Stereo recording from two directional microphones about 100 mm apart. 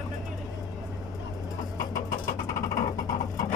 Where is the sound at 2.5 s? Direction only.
35° left (ahead or behind).